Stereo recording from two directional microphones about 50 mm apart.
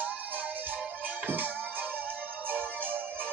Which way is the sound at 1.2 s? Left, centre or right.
Right.